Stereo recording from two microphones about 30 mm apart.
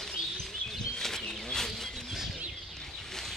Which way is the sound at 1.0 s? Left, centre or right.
Centre.